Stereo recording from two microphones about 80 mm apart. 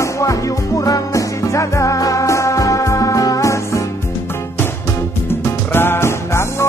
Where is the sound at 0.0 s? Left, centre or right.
Left.